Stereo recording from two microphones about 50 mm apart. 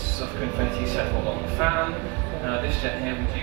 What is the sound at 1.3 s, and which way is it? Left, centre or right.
Speech, centre.